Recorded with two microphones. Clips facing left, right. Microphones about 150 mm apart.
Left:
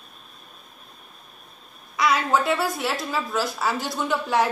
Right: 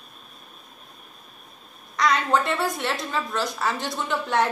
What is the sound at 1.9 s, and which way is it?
A woman's voice, 5° left (ahead or behind).